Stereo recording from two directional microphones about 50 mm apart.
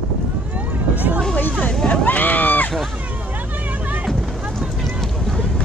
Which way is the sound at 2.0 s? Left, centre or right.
Left.